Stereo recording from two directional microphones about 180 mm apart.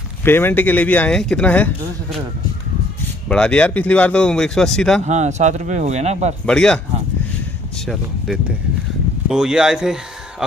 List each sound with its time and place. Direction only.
0.2 s speech: 10° left (ahead or behind)
3.3 s speech: 5° left (ahead or behind)
5.0 s speech: 40° right (ahead or behind)
6.4 s speech: 5° left (ahead or behind)